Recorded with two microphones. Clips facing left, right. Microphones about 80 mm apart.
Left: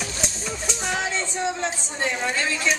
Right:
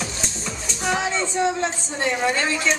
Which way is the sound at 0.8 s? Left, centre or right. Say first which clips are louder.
Right 5 dB; centre.